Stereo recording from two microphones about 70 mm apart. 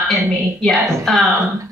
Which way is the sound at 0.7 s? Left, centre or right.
Right.